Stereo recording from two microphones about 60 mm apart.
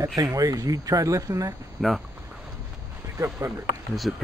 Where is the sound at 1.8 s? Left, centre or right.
Centre.